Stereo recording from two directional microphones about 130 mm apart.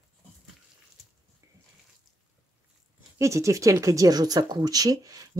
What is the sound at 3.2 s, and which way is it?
Speech, 25° right (ahead or behind).